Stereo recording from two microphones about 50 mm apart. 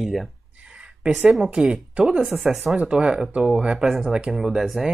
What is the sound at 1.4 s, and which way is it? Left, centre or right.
Speech, centre.